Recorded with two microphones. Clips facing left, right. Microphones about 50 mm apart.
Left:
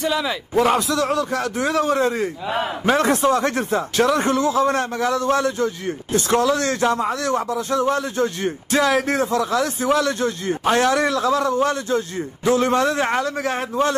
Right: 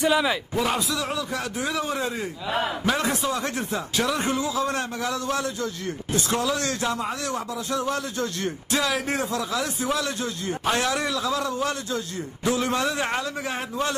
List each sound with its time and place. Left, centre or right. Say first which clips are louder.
0.0 s a man's voice: right 1 dB; centre
0.7 s speech: left 7 dB; left
2.5 s a man's voice: left 4 dB; left
3.0 s speech: left 8 dB; left
7.8 s a man's voice: left 7 dB; left
8.8 s speech: left 9 dB; left
10.5 s a man's voice: left 5 dB; left
10.8 s speech: left 7 dB; left